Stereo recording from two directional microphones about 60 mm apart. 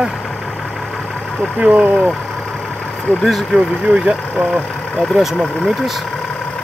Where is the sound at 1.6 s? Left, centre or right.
Right.